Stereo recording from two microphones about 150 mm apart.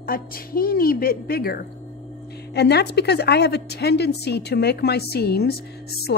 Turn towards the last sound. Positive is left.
turn(degrees=90)